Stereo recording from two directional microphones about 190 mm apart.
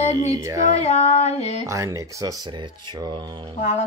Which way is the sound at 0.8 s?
35° left (ahead or behind).